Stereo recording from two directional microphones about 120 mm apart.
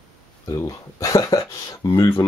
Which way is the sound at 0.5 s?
25° left (ahead or behind).